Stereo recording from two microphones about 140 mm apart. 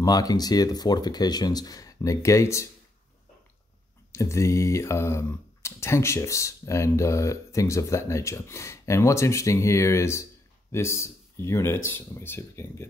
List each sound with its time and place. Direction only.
0.0 s speech: 25° left (ahead or behind)
4.1 s speech: 20° left (ahead or behind)